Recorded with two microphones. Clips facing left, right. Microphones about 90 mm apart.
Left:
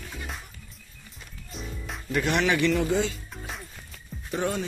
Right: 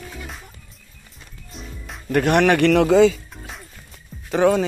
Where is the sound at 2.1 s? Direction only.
55° right (ahead or behind); by 3.0 s 85° right.